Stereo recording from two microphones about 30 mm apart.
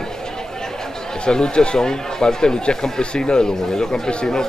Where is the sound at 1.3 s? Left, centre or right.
Left.